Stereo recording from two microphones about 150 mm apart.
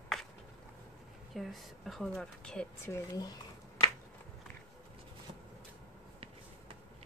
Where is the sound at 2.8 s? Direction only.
20° left (ahead or behind).